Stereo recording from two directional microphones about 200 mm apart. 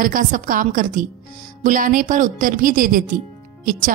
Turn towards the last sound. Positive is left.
turn(degrees=-40)  # may be behind; listen again after turning